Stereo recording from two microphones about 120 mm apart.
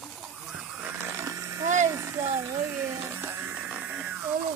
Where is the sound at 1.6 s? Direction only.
90° right.